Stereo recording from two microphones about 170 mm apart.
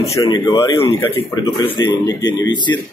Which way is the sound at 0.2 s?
20° left (ahead or behind).